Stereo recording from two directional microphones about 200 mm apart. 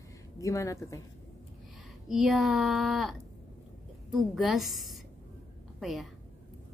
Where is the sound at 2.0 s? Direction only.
Centre (ahead or behind).